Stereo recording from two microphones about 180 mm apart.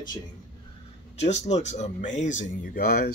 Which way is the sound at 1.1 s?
40° left (ahead or behind).